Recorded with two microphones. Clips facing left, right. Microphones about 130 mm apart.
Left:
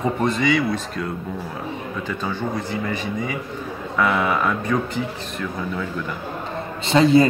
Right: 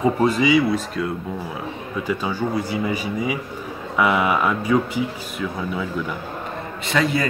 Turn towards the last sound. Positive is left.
turn(degrees=25)  # may be behind; listen again after turning